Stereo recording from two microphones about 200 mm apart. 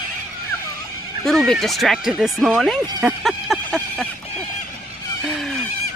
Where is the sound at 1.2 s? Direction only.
Centre (ahead or behind).